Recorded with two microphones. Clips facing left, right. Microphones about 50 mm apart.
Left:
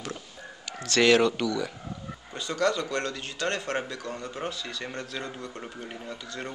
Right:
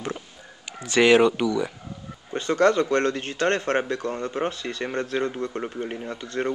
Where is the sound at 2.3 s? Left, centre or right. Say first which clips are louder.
Right 7 dB; right.